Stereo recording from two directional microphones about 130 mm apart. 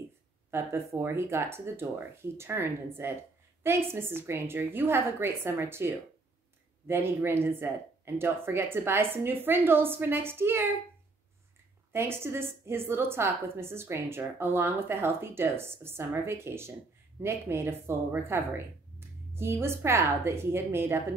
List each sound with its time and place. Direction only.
0.5 s a woman's voice: 20° right (ahead or behind)
11.9 s a woman's voice: 20° right (ahead or behind)